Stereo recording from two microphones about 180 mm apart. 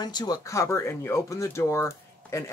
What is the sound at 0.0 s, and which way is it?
Speech, 25° left (ahead or behind).